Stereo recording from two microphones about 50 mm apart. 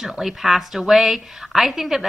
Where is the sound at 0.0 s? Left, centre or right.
Centre.